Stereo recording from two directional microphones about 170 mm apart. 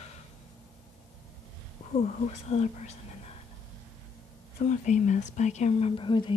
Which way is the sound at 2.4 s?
40° left (ahead or behind).